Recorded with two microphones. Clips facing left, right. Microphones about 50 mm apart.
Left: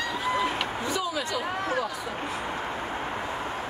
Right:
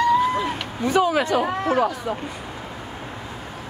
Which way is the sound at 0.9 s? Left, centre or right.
Right.